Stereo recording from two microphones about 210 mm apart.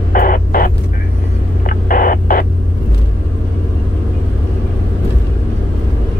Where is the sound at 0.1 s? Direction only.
40° left (ahead or behind).